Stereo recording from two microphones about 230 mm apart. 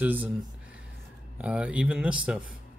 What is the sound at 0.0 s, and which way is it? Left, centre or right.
Speech, centre.